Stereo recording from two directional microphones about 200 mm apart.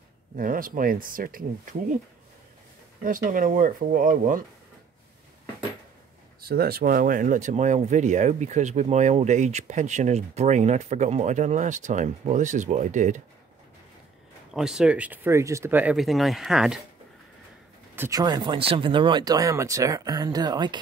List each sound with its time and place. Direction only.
0.4 s speech: 45° right (ahead or behind)
3.0 s speech: 40° right (ahead or behind)
6.4 s speech: 50° right (ahead or behind)
14.5 s speech: centre (ahead or behind)
17.9 s speech: 15° right (ahead or behind)